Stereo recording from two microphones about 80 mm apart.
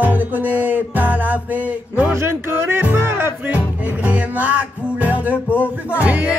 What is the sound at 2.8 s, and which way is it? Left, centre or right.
Music, right.